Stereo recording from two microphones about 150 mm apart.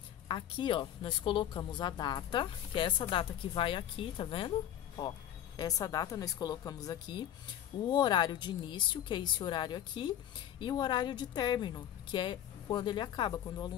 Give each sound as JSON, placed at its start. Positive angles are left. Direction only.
{"t": 0.3, "sound": "speech", "side_deg": 35}